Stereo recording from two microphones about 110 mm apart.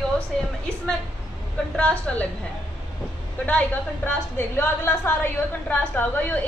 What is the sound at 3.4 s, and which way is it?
A woman's voice, 15° left (ahead or behind).